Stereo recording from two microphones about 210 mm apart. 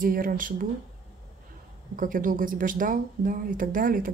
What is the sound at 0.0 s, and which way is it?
Speech, 40° right (ahead or behind).